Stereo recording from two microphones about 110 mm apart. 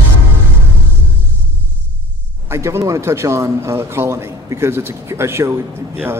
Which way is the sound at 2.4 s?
25° right (ahead or behind).